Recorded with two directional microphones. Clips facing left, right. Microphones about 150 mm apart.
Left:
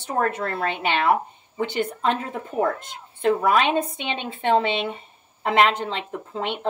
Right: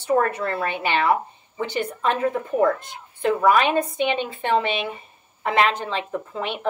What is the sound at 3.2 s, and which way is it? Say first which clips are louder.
A woman's voice: right 1 dB; 25° left (ahead or behind).